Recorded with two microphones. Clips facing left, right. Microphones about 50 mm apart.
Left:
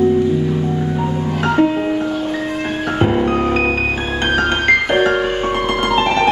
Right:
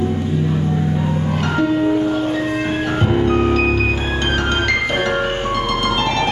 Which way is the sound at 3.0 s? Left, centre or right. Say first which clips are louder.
Left 2 dB; left.